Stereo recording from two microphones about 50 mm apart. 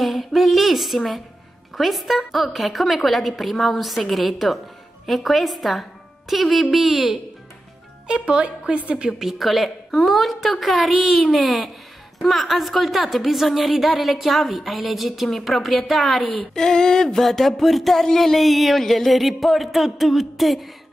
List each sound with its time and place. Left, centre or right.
0.0 s speech: centre
8.1 s speech: centre
9.2 s speech: centre
16.5 s speech: centre